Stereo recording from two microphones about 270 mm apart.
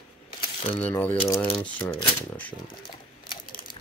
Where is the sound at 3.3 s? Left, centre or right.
Left.